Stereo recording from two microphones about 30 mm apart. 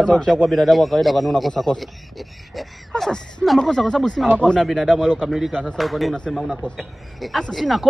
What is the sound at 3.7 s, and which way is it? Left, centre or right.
Speech, centre.